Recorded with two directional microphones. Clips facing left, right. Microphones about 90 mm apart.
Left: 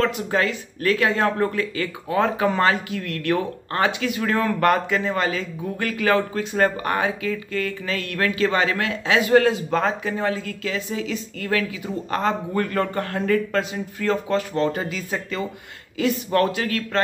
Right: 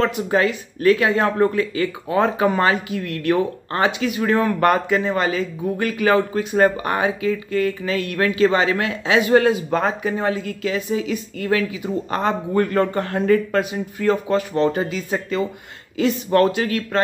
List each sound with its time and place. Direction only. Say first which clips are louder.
0.0 s speech: right 3 dB; 20° right (ahead or behind)